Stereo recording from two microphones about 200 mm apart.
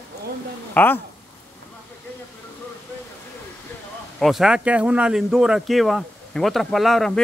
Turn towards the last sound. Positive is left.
turn(degrees=0)  # may be behind; listen again after turning